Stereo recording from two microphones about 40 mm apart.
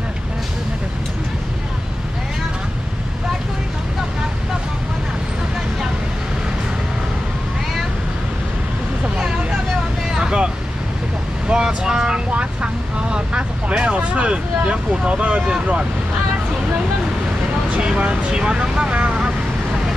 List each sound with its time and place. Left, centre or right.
10.1 s vehicle: right
12.3 s vehicle: right
17.8 s vehicle: right